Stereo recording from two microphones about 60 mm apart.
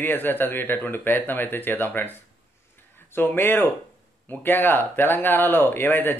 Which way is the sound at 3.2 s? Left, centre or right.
Left.